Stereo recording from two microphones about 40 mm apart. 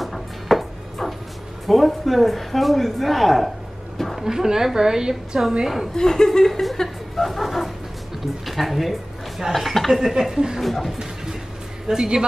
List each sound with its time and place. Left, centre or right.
0.0 s music: centre
1.7 s a man's voice: centre
4.2 s a woman's voice: centre
5.9 s speech: centre
7.2 s a man's voice: centre
10.6 s a man's voice: centre
11.9 s a woman's voice: centre